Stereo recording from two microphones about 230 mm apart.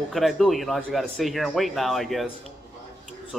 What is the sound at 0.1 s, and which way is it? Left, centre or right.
Speech, centre.